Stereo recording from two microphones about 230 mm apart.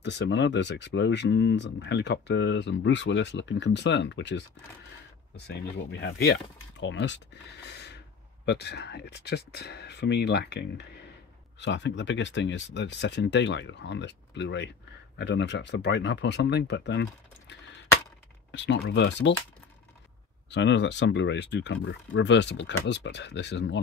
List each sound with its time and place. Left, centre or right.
0.0 s speech: left
5.8 s speech: left
20.4 s speech: left